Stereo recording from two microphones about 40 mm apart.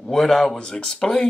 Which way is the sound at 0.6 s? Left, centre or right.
Left.